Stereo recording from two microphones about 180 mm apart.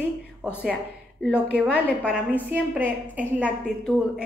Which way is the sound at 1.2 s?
5° right (ahead or behind).